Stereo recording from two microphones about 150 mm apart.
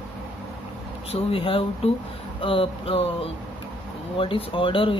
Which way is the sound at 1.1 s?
40° left (ahead or behind).